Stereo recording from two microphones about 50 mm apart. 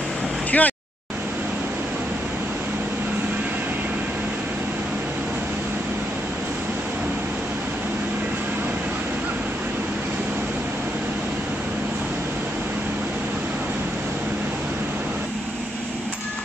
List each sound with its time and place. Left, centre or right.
0.5 s vehicle: left